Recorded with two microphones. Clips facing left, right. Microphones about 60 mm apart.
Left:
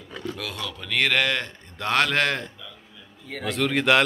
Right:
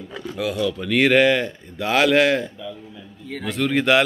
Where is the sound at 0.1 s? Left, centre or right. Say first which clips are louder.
Right 6 dB; centre.